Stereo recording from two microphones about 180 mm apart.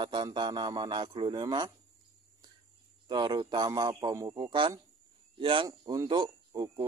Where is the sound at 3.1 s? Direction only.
25° right (ahead or behind).